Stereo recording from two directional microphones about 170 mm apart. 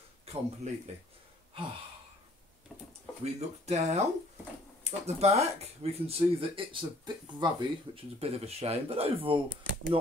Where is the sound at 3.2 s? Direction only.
40° right (ahead or behind).